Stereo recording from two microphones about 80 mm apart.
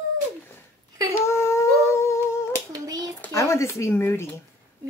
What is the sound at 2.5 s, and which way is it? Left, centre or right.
Child singing, right.